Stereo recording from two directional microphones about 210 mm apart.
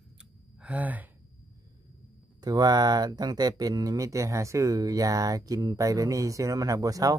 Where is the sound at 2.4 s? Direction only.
20° right (ahead or behind).